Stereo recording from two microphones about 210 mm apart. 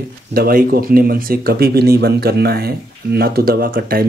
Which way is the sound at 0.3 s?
45° right (ahead or behind).